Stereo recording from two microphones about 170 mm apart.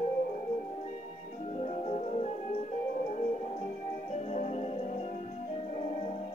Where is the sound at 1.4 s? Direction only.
40° left (ahead or behind).